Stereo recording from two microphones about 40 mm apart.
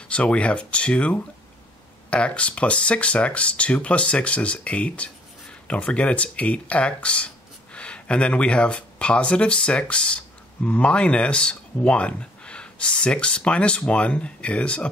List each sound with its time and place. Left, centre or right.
0.1 s speech: left